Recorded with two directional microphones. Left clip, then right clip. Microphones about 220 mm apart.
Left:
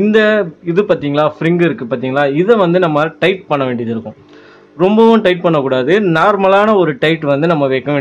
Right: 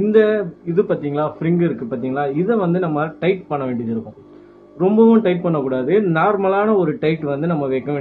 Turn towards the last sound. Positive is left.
turn(degrees=45)  # may be behind; listen again after turning